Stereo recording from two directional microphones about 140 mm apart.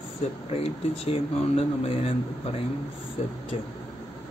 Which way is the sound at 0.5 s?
45° left (ahead or behind).